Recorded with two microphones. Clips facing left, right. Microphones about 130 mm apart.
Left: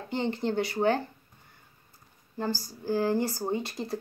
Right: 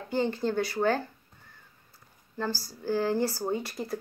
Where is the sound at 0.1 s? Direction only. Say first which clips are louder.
Right 1 dB; 20° left (ahead or behind).